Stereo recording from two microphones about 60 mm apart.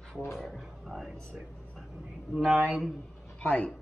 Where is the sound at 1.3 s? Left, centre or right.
Centre.